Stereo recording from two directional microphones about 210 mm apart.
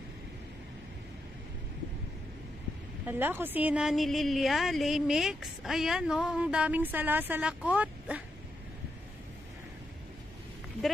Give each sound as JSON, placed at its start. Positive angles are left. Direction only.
{"t": 3.1, "sound": "a woman's voice", "side_deg": -10}